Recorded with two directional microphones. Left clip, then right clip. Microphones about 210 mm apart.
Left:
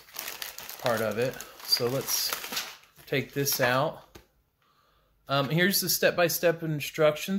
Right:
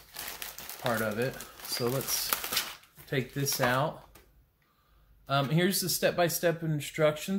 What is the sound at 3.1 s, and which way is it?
Speech, 40° left (ahead or behind).